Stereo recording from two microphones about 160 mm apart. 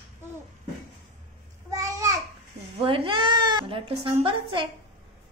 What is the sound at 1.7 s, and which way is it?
Babbling, 20° right (ahead or behind).